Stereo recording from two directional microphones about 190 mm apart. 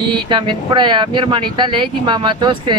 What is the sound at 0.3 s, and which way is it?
Speech, 25° right (ahead or behind).